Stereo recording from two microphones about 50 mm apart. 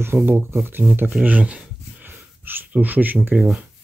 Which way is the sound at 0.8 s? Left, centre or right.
Centre.